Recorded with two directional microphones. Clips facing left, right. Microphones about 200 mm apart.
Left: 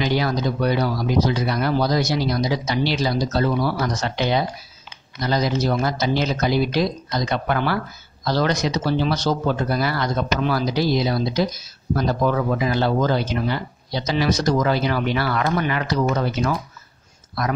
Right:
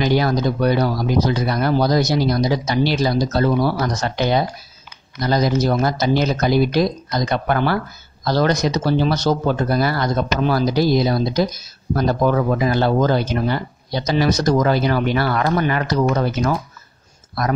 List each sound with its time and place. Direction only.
0.0 s speech: 45° right (ahead or behind)